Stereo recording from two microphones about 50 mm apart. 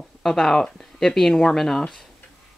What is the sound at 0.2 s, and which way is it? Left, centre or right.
Speech, centre.